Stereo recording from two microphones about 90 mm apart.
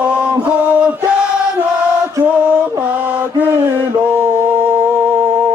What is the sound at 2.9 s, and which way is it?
Mantra, 15° right (ahead or behind).